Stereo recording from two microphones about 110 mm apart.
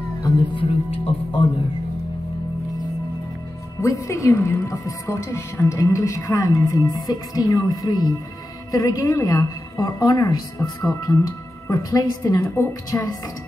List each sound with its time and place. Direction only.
0.6 s speech: 50° left (ahead or behind)
3.8 s a woman's voice: 30° left (ahead or behind)
12.4 s a woman's voice: 25° left (ahead or behind)